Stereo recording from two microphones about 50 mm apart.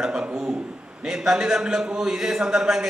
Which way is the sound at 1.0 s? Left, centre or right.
Centre.